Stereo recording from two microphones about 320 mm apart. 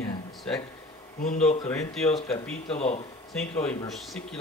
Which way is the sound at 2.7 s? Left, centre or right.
Centre.